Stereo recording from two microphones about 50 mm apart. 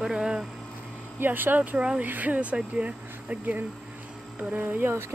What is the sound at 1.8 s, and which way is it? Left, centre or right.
Speech, right.